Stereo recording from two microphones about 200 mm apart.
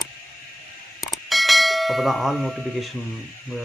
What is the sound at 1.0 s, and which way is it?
Bell, centre (ahead or behind).